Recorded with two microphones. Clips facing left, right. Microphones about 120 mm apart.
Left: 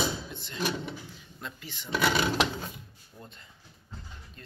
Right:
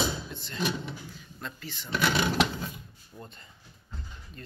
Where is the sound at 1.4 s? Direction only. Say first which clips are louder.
Right 2 dB; 15° left (ahead or behind).